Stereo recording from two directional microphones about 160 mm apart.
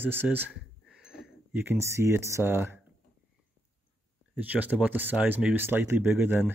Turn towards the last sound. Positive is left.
turn(degrees=-15)  # may be behind; listen again after turning